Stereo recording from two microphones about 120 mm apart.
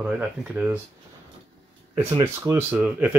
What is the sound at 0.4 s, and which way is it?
Speech, 15° right (ahead or behind).